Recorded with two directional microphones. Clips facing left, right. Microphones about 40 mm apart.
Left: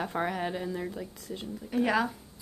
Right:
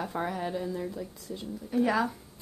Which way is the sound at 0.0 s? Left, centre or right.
Left.